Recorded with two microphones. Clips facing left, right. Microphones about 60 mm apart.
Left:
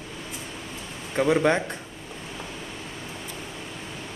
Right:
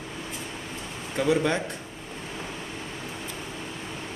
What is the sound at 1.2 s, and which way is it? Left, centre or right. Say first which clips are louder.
Speech: left 3 dB; left.